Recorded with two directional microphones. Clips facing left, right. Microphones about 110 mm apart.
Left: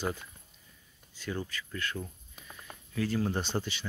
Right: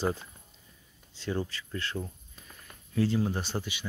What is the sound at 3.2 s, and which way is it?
Speech, 5° right (ahead or behind).